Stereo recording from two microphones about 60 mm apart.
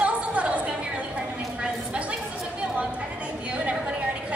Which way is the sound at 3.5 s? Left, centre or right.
Right.